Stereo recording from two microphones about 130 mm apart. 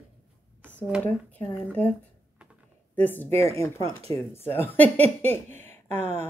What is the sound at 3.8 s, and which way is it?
Speech, 50° right (ahead or behind).